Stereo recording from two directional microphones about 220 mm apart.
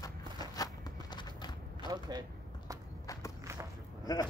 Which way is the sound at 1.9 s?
20° right (ahead or behind).